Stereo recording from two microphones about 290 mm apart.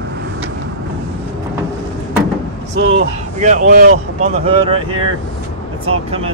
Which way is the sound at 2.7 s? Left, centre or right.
Right.